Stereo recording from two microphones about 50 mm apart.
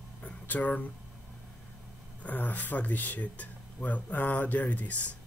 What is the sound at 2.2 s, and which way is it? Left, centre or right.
Speech, left.